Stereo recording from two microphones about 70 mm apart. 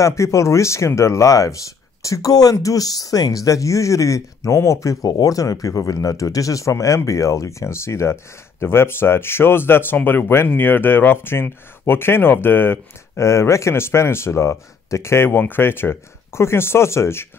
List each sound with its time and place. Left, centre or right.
0.0 s speech: left
5.0 s speech: left